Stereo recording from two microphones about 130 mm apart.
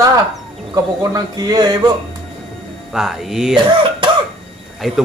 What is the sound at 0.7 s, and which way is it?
A man's voice, 30° right (ahead or behind).